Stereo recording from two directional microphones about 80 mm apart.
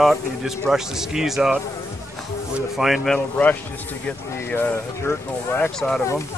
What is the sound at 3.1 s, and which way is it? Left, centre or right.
Speech, centre.